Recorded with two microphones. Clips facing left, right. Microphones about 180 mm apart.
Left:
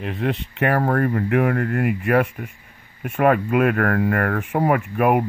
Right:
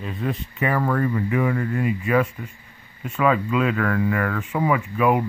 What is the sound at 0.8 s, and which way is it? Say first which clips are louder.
Speech: left 2 dB; 60° left (ahead or behind).